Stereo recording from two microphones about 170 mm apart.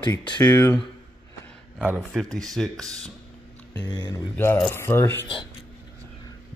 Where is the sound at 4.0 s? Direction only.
20° left (ahead or behind).